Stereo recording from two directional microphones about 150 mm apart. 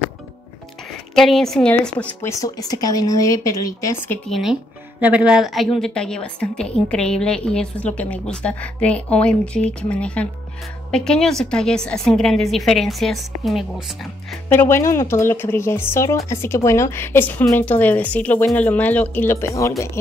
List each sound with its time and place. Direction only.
1.1 s a woman's voice: centre (ahead or behind)
2.4 s a woman's voice: 25° left (ahead or behind)
4.3 s a woman's voice: centre (ahead or behind)
14.5 s a woman's voice: 15° left (ahead or behind)